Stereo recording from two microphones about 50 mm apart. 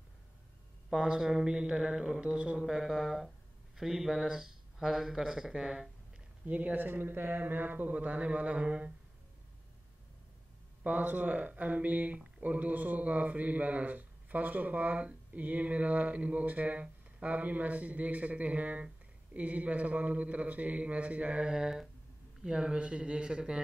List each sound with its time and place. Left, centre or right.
0.8 s speech: centre
2.6 s speech: centre
6.4 s a man's voice: right
10.8 s a man's voice: right
21.5 s speech: centre